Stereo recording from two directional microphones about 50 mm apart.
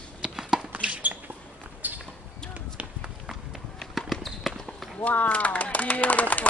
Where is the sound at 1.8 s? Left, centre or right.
Right.